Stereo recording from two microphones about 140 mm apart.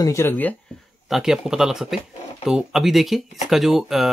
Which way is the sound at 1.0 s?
5° right (ahead or behind).